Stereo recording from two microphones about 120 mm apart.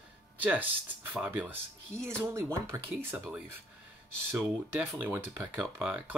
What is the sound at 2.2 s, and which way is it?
Speech, 25° right (ahead or behind).